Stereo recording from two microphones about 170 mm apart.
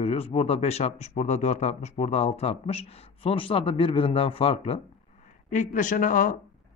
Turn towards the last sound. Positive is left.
turn(degrees=50)  # may be behind; listen again after turning